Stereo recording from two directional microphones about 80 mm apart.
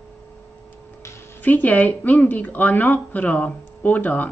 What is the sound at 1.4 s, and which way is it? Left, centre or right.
Speech, left.